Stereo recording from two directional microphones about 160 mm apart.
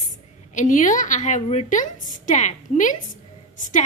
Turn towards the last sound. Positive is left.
turn(degrees=55)  # may be behind; listen again after turning